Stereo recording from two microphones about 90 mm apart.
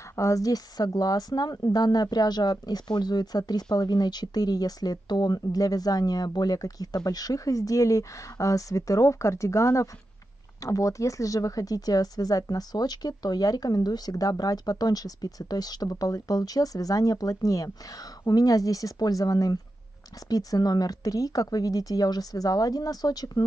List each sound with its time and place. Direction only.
0.1 s speech: 35° left (ahead or behind)